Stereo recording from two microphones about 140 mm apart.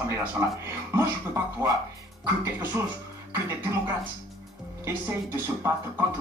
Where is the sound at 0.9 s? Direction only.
15° right (ahead or behind).